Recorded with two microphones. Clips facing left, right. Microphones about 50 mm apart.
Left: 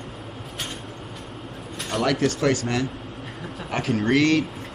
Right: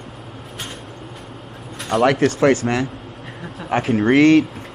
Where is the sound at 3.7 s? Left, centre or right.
Right.